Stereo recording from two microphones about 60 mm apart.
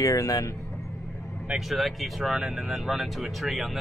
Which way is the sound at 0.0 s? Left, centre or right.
Left.